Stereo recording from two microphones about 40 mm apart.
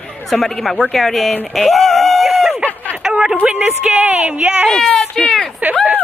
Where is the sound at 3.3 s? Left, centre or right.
Right.